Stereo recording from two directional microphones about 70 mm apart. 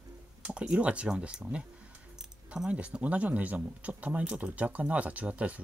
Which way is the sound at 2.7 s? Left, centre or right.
Centre.